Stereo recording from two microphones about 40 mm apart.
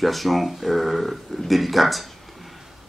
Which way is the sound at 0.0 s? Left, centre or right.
Centre.